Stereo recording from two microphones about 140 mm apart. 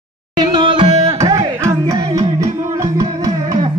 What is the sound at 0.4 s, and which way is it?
Music, 30° right (ahead or behind).